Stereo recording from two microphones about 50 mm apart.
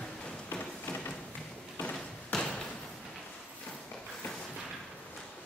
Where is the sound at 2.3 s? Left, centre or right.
Centre.